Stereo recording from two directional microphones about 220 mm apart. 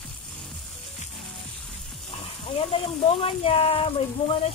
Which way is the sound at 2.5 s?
25° left (ahead or behind).